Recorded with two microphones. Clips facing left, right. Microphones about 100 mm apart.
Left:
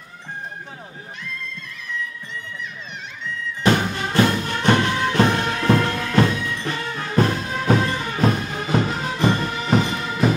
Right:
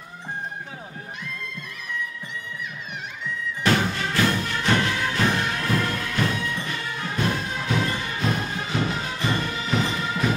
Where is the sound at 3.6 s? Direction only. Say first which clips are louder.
Left 3 dB; 20° left (ahead or behind).